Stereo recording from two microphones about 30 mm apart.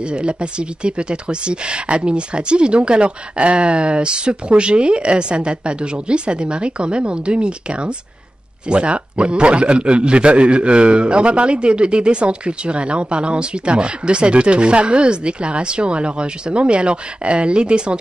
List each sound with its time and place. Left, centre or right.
0.0 s a man's voice: right